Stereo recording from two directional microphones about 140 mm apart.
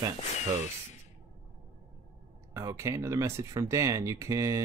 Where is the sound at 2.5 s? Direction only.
25° right (ahead or behind).